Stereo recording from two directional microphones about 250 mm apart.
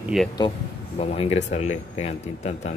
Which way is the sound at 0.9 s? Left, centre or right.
Left.